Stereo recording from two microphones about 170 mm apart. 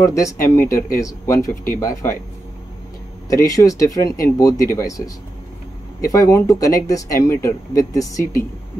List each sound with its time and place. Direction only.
0.0 s speech: 20° left (ahead or behind)
3.3 s speech: 20° left (ahead or behind)